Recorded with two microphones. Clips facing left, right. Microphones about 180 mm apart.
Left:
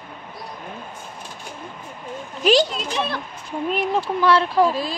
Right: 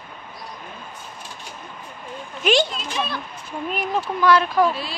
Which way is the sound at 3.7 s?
30° left (ahead or behind).